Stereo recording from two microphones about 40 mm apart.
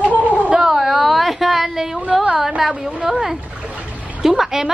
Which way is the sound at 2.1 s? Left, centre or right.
Centre.